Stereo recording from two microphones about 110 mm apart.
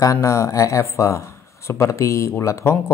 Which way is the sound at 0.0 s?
30° left (ahead or behind).